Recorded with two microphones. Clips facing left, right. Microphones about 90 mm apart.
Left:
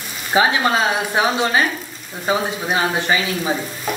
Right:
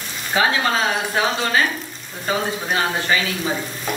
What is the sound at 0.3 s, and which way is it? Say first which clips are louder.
Speech: left 3 dB; 20° left (ahead or behind).